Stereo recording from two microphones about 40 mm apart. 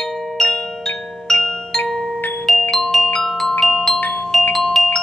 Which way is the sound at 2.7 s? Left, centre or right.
Centre.